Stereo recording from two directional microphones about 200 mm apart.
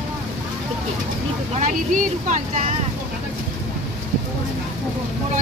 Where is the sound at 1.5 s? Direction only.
40° right (ahead or behind).